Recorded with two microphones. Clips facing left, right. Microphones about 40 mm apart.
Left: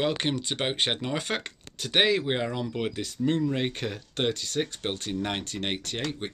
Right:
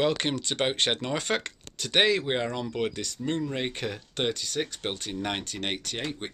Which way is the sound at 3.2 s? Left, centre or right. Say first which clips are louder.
Left 4 dB; centre.